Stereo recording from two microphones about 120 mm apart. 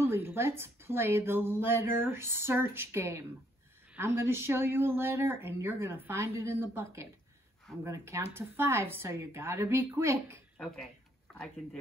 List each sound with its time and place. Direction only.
0.0 s a woman's voice: 20° right (ahead or behind)
11.3 s speech: 5° left (ahead or behind)